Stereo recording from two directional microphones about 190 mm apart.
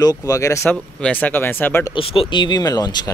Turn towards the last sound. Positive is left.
turn(degrees=20)  # may be behind; listen again after turning